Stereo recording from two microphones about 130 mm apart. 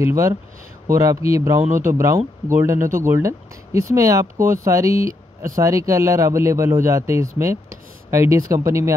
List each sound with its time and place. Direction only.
0.0 s speech: 20° right (ahead or behind)